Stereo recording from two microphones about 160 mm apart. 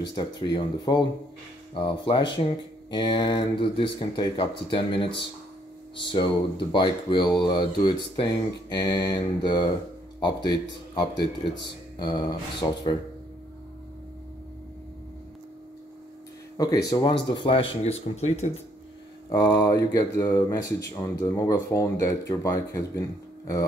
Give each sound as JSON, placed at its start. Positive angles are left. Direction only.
{"t": 0.4, "sound": "speech", "side_deg": 25}
{"t": 12.0, "sound": "speech", "side_deg": 25}
{"t": 16.5, "sound": "speech", "side_deg": 20}
{"t": 19.2, "sound": "speech", "side_deg": 25}